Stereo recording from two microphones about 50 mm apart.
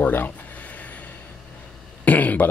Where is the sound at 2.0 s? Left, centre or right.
Left.